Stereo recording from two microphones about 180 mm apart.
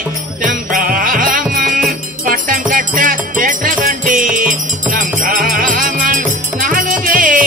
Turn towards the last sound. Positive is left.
turn(degrees=-45)  # may be behind; listen again after turning